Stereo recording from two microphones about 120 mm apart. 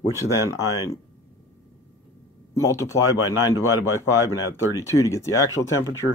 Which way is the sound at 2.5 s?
25° left (ahead or behind).